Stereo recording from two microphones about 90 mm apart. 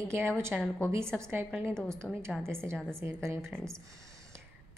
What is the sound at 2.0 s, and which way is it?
Speech, 10° left (ahead or behind).